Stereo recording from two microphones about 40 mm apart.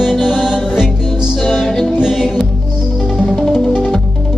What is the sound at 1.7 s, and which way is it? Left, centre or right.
Music, centre.